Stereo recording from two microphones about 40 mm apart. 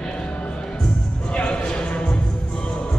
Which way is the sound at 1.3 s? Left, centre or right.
Left.